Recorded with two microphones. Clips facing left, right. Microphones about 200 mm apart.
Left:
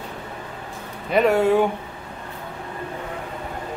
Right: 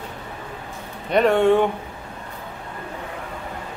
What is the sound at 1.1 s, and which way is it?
Speech, 5° left (ahead or behind).